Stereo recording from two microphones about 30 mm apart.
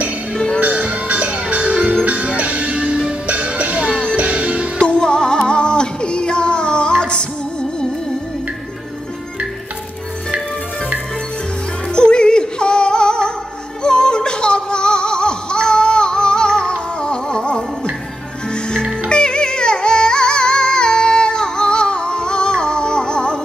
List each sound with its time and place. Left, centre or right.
0.6 s music: right
0.8 s music: right
4.9 s music: left
11.9 s music: left